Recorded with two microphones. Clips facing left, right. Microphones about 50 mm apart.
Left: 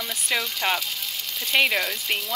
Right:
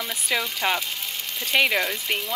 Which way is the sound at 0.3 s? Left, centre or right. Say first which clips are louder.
Right 1 dB; centre.